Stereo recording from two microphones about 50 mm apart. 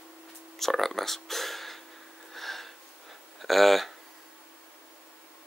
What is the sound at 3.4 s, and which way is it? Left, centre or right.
Speech, centre.